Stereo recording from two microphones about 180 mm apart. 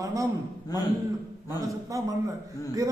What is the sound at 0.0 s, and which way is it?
Speech, 20° right (ahead or behind).